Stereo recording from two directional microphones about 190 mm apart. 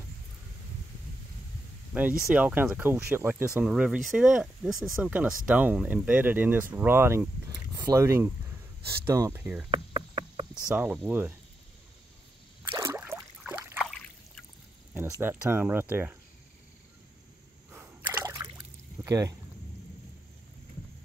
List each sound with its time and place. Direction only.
2.0 s speech: 10° right (ahead or behind)
9.7 s insect: 25° right (ahead or behind)
10.5 s speech: 5° right (ahead or behind)
12.7 s a sound: 15° right (ahead or behind)
15.0 s speech: 15° right (ahead or behind)
17.6 s a sound: 10° right (ahead or behind)
19.0 s speech: 20° right (ahead or behind)